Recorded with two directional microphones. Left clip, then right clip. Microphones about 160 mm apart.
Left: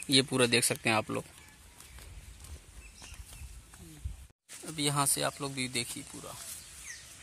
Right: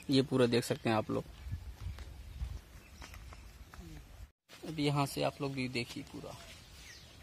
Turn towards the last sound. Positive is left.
turn(degrees=0)  # may be behind; listen again after turning